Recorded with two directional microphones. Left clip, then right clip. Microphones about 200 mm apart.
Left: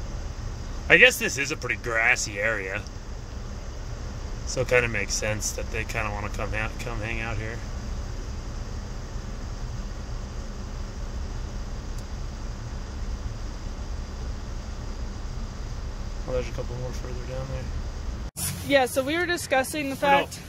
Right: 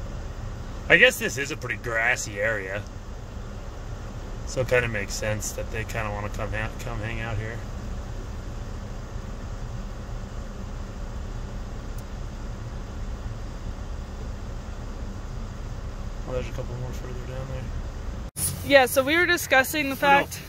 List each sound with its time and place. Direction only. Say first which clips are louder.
0.8 s speech: left 1 dB; 15° right (ahead or behind)
4.6 s speech: left 1 dB; 15° right (ahead or behind)
18.7 s speech: right 4 dB; centre (ahead or behind)